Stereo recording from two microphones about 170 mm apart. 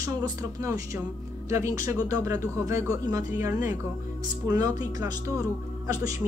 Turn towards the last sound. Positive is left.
turn(degrees=-20)  # may be behind; listen again after turning